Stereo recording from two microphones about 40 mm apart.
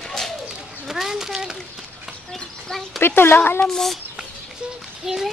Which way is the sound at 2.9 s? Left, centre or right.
Left.